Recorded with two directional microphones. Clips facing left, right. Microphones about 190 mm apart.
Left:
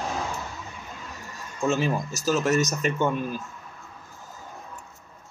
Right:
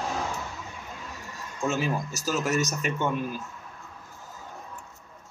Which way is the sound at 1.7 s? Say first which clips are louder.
Left 3 dB; 5° right (ahead or behind).